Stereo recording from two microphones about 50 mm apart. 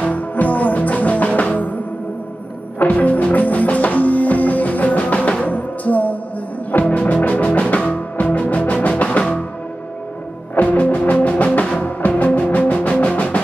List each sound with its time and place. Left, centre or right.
0.0 s music: left
2.8 s music: left
10.5 s music: left